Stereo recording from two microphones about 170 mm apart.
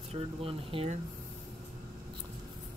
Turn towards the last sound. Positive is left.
turn(degrees=-35)  # may be behind; listen again after turning